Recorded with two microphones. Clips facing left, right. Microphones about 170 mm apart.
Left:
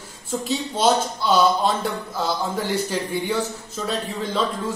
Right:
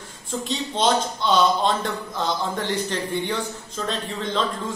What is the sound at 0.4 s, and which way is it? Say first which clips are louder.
Speech: left 1 dB; 5° left (ahead or behind).